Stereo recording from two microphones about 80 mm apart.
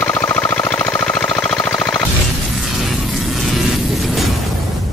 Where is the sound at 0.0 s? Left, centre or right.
Centre.